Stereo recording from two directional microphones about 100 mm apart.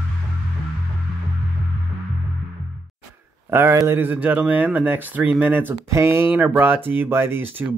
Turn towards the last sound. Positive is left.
turn(degrees=-20)  # may be behind; listen again after turning